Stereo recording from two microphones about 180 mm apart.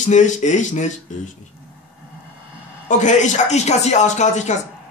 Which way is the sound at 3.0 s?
40° left (ahead or behind).